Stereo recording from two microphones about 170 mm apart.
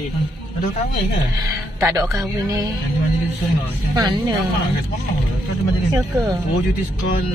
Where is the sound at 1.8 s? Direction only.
15° right (ahead or behind).